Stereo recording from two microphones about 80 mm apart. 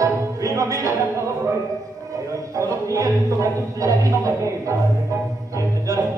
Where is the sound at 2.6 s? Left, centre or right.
Right.